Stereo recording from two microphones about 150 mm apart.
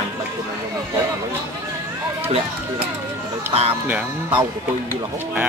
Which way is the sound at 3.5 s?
40° right (ahead or behind).